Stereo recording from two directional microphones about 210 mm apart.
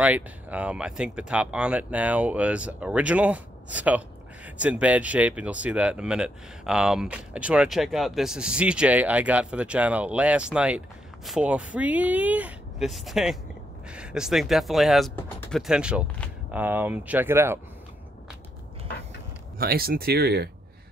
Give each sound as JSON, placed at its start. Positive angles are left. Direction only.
{"t": 0.0, "sound": "speech", "side_deg": -5}
{"t": 19.6, "sound": "speech", "side_deg": -45}